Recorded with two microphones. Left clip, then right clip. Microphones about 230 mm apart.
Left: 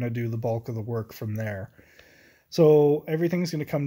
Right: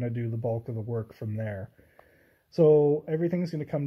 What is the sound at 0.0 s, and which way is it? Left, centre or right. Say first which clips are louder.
Speech: left 3 dB; centre.